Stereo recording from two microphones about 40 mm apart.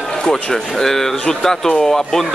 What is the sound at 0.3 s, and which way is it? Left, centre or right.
Speech, centre.